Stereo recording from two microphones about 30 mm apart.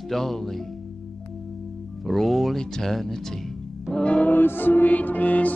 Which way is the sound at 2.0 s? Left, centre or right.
Centre.